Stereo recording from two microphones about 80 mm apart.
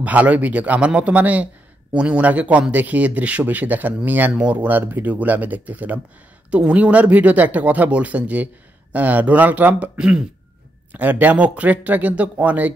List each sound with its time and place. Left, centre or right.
0.0 s speech: centre